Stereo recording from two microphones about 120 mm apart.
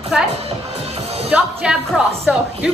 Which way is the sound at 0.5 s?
55° right (ahead or behind).